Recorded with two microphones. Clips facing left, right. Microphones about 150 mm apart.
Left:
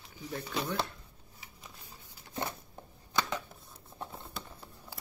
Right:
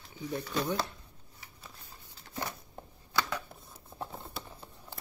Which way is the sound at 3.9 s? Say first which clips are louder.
Right 2 dB; centre (ahead or behind).